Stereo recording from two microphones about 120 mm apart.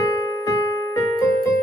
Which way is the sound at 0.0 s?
25° left (ahead or behind).